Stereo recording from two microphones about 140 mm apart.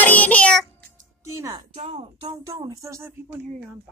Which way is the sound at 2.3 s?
25° right (ahead or behind).